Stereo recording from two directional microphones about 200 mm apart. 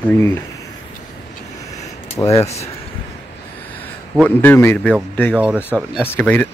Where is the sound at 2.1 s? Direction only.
15° left (ahead or behind).